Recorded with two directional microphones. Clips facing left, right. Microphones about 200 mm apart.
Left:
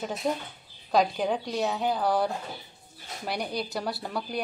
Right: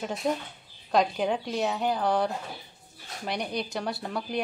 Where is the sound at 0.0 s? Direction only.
Centre (ahead or behind).